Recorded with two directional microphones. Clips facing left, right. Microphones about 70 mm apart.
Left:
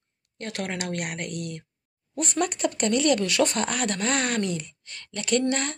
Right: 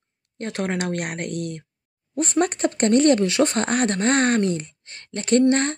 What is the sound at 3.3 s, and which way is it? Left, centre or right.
Speech, right.